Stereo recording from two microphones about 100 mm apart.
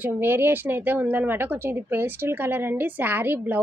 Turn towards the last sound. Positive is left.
turn(degrees=-20)  # may be behind; listen again after turning